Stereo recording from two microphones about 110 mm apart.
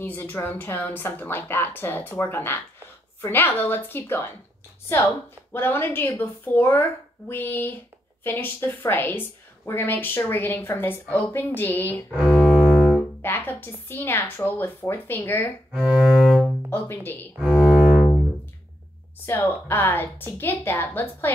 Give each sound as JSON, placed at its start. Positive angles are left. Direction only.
{"t": 0.0, "sound": "a woman's voice", "side_deg": 20}
{"t": 12.2, "sound": "cello", "side_deg": 0}
{"t": 12.6, "sound": "music", "side_deg": -5}
{"t": 13.2, "sound": "a woman's voice", "side_deg": 20}
{"t": 15.7, "sound": "cello", "side_deg": -5}
{"t": 16.7, "sound": "a woman's voice", "side_deg": 20}
{"t": 17.4, "sound": "cello", "side_deg": -5}
{"t": 19.2, "sound": "a woman's voice", "side_deg": 20}